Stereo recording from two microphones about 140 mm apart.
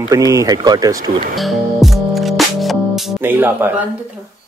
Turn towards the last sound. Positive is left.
turn(degrees=-15)  # may be behind; listen again after turning